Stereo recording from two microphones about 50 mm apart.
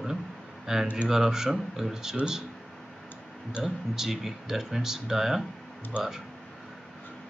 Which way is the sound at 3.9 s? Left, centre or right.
Centre.